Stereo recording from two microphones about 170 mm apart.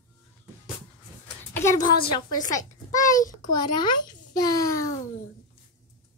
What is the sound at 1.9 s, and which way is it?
A woman's voice, 30° left (ahead or behind).